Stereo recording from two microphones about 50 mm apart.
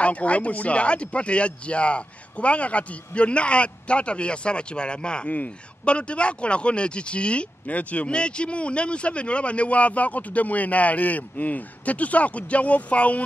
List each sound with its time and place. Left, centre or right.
0.0 s speech: left